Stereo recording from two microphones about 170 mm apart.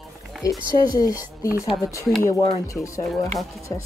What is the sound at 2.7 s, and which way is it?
Speech, 15° left (ahead or behind).